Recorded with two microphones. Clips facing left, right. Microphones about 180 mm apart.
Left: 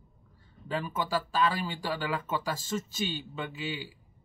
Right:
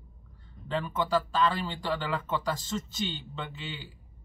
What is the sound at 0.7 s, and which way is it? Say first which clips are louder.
Speech: right 2 dB; 10° left (ahead or behind).